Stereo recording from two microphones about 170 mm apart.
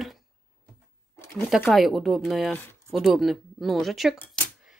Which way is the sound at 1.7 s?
Centre (ahead or behind).